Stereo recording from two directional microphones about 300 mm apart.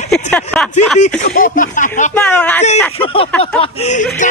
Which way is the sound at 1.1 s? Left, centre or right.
Left.